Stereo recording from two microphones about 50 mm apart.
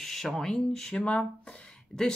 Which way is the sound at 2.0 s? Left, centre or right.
Centre.